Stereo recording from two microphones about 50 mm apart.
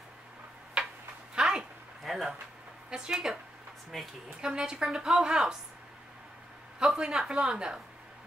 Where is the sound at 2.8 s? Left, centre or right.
Centre.